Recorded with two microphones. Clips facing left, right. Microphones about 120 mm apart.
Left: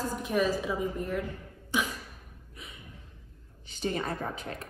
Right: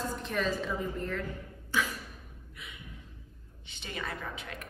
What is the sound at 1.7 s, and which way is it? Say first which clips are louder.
Throat clearing: left 1 dB; 15° left (ahead or behind).